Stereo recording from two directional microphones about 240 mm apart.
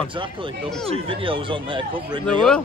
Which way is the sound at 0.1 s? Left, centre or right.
Right.